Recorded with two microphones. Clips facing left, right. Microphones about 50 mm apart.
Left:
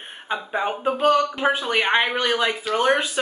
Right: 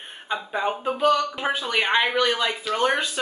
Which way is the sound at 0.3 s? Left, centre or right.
Centre.